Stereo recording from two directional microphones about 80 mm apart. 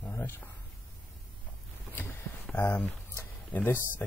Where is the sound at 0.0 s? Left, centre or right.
Left.